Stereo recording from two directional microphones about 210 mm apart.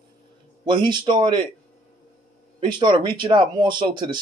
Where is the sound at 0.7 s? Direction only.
20° right (ahead or behind).